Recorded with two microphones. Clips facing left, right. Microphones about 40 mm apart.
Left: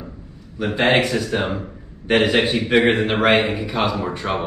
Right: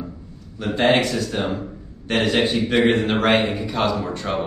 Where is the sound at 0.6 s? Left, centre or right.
Centre.